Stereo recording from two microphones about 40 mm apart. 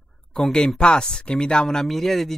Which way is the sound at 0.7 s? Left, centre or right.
Left.